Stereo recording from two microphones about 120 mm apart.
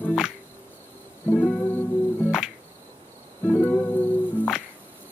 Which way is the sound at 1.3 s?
5° left (ahead or behind).